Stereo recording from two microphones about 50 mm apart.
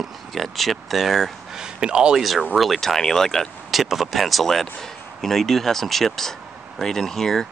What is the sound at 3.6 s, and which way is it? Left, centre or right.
Speech, centre.